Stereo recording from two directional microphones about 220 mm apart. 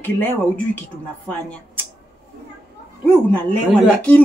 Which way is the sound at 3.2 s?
5° left (ahead or behind).